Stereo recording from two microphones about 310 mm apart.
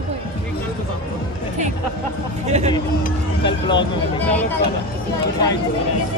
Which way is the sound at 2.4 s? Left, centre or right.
Right.